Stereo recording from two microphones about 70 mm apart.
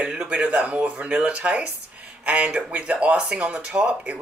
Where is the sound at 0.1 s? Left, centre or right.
Centre.